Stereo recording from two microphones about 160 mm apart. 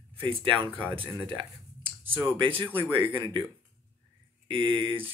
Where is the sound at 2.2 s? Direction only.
30° right (ahead or behind).